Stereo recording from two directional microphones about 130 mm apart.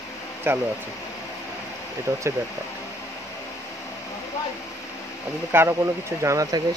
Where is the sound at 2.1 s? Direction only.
15° right (ahead or behind).